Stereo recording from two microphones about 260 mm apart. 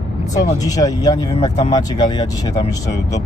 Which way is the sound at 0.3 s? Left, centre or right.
Centre.